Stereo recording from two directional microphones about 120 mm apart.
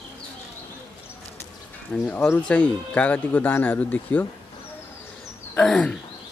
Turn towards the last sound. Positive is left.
turn(degrees=5)  # may be behind; listen again after turning